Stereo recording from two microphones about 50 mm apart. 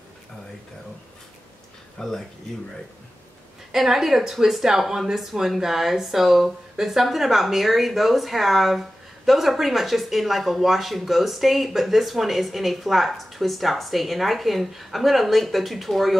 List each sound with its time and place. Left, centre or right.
2.0 s speech: centre
3.7 s speech: centre